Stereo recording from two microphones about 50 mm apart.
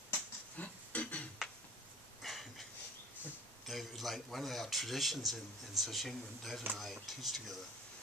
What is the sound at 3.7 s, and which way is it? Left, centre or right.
A man's voice, centre.